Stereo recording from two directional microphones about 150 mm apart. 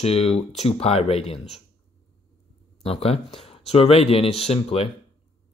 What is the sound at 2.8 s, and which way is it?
Speech, 40° left (ahead or behind).